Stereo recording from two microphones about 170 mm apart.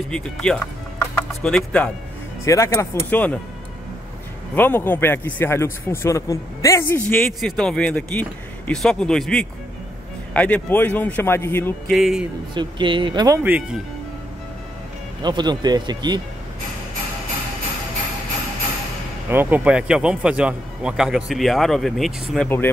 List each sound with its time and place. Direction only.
0.1 s a man's voice: 5° left (ahead or behind)
2.4 s speech: 20° left (ahead or behind)
4.6 s a man's voice: 10° left (ahead or behind)
11.9 s a man's voice: centre (ahead or behind)
12.5 s speech: 30° right (ahead or behind)
13.4 s speech: 10° right (ahead or behind)
15.2 s speech: 25° right (ahead or behind)
19.3 s a man's voice: 10° right (ahead or behind)